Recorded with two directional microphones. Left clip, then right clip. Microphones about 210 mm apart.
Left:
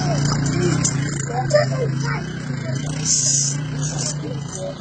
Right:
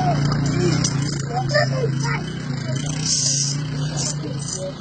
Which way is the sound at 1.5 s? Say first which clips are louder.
Left 3 dB; 40° left (ahead or behind).